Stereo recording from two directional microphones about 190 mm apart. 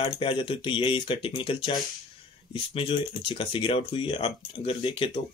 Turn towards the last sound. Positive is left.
turn(degrees=25)  # may be behind; listen again after turning